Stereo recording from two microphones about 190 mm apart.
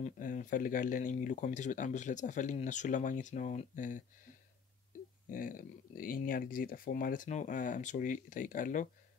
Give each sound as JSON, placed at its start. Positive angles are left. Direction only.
{"t": 0.0, "sound": "speech", "side_deg": 45}
{"t": 5.3, "sound": "speech", "side_deg": 45}